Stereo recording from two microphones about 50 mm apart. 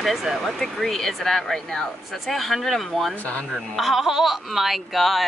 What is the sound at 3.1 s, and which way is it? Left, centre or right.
Speech, left.